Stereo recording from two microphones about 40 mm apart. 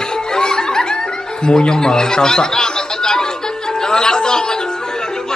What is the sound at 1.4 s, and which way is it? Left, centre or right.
Speech, centre.